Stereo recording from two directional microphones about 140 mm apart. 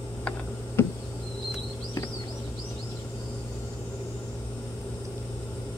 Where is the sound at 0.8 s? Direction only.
15° left (ahead or behind).